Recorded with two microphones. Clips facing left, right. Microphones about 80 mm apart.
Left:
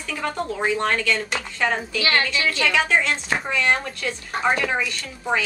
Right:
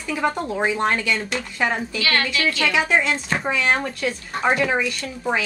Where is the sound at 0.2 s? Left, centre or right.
Right.